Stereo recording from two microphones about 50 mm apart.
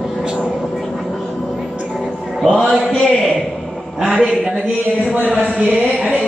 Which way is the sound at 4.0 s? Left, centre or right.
Centre.